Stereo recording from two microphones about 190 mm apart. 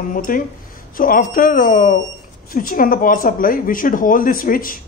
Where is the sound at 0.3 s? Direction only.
50° left (ahead or behind).